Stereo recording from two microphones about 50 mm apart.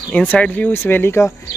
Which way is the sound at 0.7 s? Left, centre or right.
Left.